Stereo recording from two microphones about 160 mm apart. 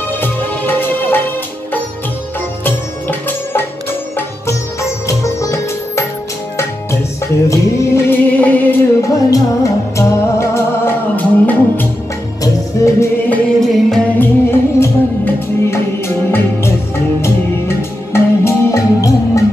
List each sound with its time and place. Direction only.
0.2 s music: 15° left (ahead or behind)
2.6 s music: 10° left (ahead or behind)
5.0 s music: 20° left (ahead or behind)
13.6 s music: 5° left (ahead or behind)
14.8 s music: 15° left (ahead or behind)